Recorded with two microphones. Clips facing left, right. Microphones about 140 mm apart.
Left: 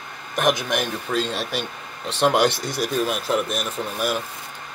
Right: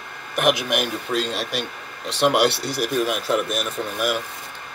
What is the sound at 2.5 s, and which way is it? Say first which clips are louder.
Speech: right 1 dB; 35° right (ahead or behind).